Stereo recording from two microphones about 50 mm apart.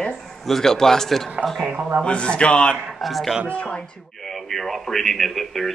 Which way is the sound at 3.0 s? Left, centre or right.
Centre.